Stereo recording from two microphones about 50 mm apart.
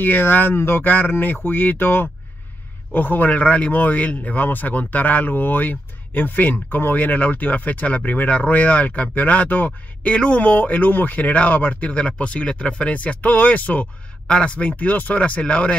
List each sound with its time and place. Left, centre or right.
0.0 s a man's voice: left
10.0 s a man's voice: left
14.2 s speech: left